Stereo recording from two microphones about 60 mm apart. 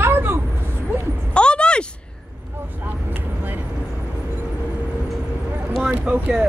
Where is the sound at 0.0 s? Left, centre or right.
Right.